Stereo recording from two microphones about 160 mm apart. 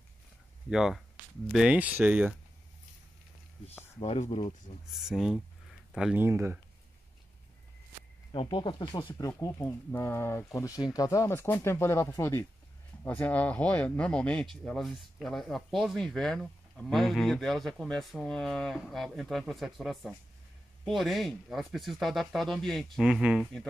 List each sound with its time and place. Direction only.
0.7 s speech: centre (ahead or behind)
4.0 s speech: 40° left (ahead or behind)
4.9 s speech: centre (ahead or behind)
8.3 s speech: 30° left (ahead or behind)
9.4 s speech: 15° left (ahead or behind)